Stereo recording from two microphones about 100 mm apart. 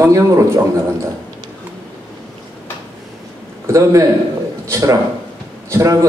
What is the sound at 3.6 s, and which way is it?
A man's voice, 30° right (ahead or behind).